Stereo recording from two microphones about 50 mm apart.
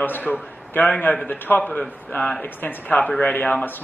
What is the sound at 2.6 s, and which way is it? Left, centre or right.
Speech, left.